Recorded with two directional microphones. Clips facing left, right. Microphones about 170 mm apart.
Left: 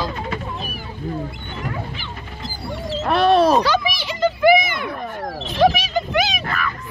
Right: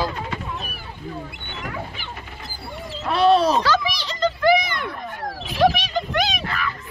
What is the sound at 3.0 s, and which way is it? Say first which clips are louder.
Speech: left 2 dB; 55° left (ahead or behind).